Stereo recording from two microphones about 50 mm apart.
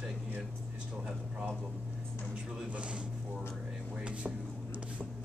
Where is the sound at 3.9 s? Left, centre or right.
Right.